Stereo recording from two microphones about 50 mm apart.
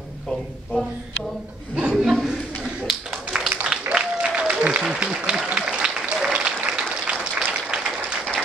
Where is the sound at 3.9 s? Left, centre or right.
Centre.